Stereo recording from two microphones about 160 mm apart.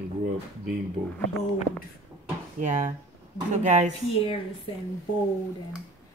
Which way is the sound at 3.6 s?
50° right (ahead or behind).